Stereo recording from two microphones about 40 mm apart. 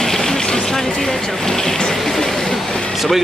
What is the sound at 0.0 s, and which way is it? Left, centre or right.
Vehicle, centre.